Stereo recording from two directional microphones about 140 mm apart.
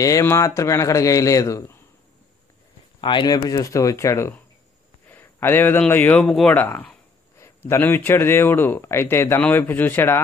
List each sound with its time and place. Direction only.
0.0 s speech: 20° left (ahead or behind)
3.0 s speech: 35° left (ahead or behind)
3.3 s a man's voice: 25° left (ahead or behind)